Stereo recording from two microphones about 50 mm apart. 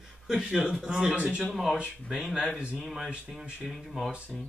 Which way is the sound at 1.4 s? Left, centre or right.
Centre.